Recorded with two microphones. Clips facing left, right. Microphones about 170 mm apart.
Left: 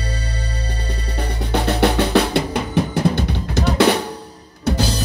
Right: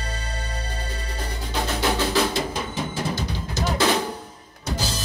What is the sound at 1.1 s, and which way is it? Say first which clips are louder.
Drum: left 7 dB; 65° left (ahead or behind).